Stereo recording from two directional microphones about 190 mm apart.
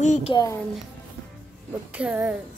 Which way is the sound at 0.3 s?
20° left (ahead or behind).